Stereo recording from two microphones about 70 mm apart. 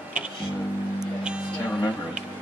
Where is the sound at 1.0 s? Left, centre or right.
Centre.